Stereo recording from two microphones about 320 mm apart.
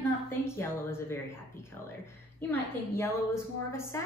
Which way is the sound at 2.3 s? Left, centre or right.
Centre.